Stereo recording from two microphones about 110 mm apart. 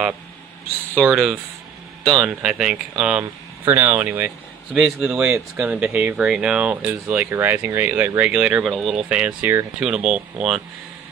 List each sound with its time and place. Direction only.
1.1 s speech: 5° right (ahead or behind)